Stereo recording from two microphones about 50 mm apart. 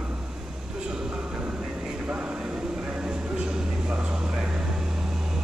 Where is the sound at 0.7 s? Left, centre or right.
Right.